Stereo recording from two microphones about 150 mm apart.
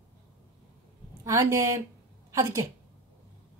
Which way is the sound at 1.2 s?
20° right (ahead or behind).